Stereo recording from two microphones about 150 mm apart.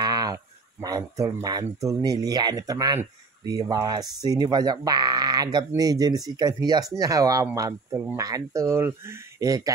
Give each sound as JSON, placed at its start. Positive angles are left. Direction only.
{"t": 0.0, "sound": "speech", "side_deg": -25}